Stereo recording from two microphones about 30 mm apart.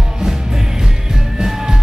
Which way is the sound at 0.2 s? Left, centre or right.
Centre.